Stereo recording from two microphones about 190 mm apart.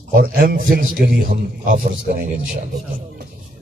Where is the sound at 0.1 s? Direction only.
50° right (ahead or behind).